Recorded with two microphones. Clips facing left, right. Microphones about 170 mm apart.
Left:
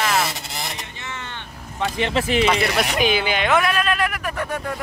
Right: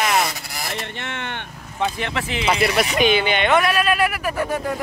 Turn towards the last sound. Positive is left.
turn(degrees=-5)  # may be behind; listen again after turning